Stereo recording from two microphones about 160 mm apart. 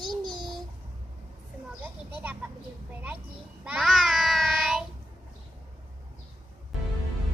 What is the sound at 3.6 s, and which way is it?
Child singing, 5° right (ahead or behind).